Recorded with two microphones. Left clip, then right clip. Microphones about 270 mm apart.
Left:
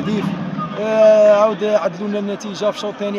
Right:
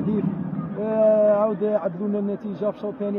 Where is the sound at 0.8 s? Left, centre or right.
Centre.